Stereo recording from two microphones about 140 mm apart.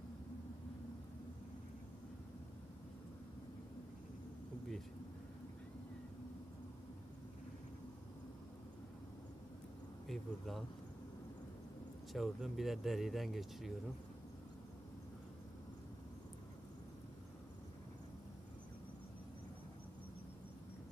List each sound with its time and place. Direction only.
10.0 s speech: centre (ahead or behind)
12.1 s speech: centre (ahead or behind)